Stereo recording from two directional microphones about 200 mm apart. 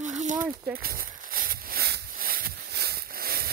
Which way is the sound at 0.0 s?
40° right (ahead or behind).